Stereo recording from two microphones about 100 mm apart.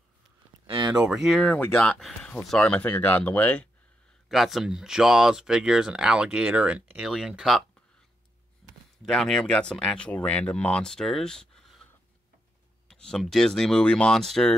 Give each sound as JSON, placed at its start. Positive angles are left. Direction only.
{"t": 0.7, "sound": "a sound", "side_deg": -45}
{"t": 1.0, "sound": "speech", "side_deg": -5}
{"t": 1.4, "sound": "speech", "side_deg": 15}
{"t": 4.3, "sound": "speech", "side_deg": 0}
{"t": 8.6, "sound": "a sound", "side_deg": 0}
{"t": 9.0, "sound": "speech", "side_deg": 5}